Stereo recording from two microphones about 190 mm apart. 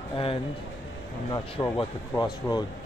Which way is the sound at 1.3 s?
25° left (ahead or behind).